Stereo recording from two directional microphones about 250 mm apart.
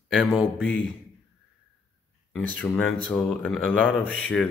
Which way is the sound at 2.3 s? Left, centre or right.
Centre.